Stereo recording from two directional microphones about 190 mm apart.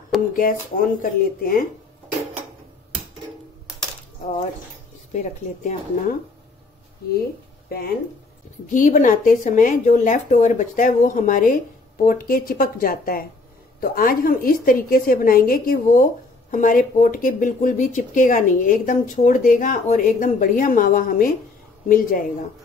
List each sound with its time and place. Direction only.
0.4 s a woman's voice: 50° left (ahead or behind)
5.1 s speech: 40° left (ahead or behind)
8.7 s a woman's voice: 40° left (ahead or behind)